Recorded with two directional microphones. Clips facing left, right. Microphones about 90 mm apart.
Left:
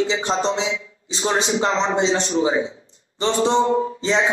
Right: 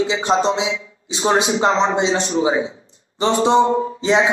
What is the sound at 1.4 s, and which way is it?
A man's voice, 35° right (ahead or behind).